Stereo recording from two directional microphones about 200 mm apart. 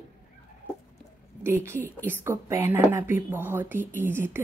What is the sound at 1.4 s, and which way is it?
A woman's voice, 10° right (ahead or behind).